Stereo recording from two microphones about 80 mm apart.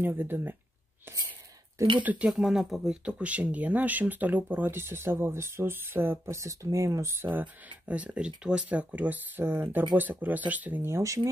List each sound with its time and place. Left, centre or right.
0.0 s speech: right
2.0 s speech: centre
2.3 s speech: centre; by 7.2 s right
7.9 s speech: centre
10.9 s speech: right